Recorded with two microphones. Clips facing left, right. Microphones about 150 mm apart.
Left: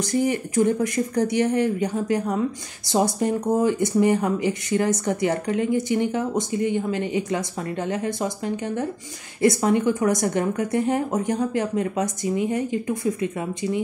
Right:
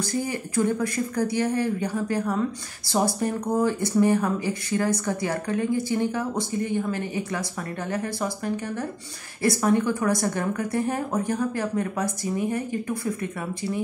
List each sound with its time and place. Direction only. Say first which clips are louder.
0.1 s a woman's voice: left 5 dB; 20° left (ahead or behind)